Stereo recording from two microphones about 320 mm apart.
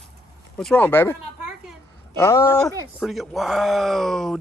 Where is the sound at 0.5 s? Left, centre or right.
Centre.